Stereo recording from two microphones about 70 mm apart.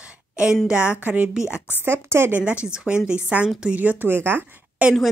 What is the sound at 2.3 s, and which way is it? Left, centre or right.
Speech, centre.